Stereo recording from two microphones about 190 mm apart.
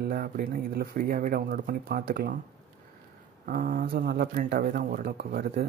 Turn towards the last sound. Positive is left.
turn(degrees=-55)  # may be behind; listen again after turning